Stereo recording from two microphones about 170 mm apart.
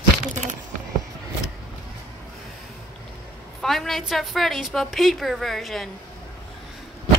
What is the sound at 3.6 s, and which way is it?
A woman's voice, centre (ahead or behind).